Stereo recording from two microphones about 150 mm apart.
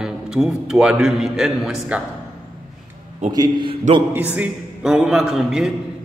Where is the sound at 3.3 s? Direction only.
30° right (ahead or behind).